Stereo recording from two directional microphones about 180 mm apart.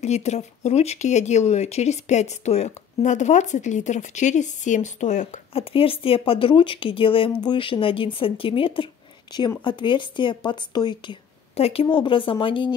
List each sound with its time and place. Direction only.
0.0 s speech: 40° left (ahead or behind)